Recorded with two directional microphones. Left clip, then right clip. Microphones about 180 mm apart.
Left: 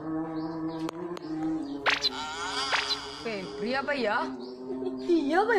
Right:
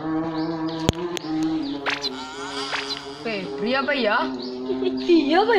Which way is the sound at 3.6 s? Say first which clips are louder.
Right 7 dB; 20° left (ahead or behind).